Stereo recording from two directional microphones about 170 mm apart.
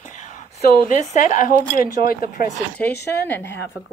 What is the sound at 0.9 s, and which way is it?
Speech, 50° left (ahead or behind).